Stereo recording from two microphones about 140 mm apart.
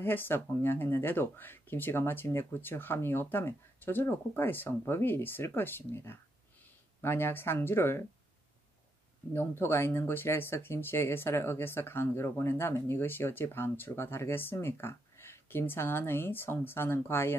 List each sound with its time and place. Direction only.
0.0 s speech: 15° left (ahead or behind)
9.3 s speech: 15° left (ahead or behind)